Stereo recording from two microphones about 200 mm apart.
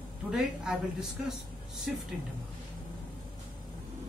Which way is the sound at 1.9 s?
5° right (ahead or behind).